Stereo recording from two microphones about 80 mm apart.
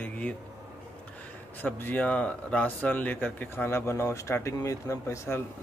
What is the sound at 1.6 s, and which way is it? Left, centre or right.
Speech, left.